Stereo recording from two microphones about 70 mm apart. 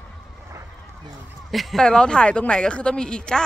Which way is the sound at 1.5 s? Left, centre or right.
Centre.